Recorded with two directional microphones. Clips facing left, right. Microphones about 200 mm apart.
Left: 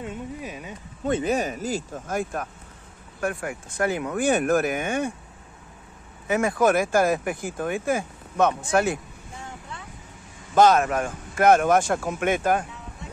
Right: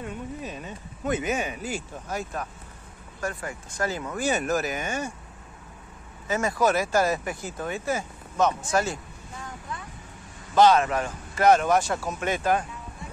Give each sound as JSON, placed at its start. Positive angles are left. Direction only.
{"t": 0.0, "sound": "speech", "side_deg": 15}
{"t": 1.0, "sound": "speech", "side_deg": 30}
{"t": 6.2, "sound": "speech", "side_deg": 60}
{"t": 10.5, "sound": "speech", "side_deg": 50}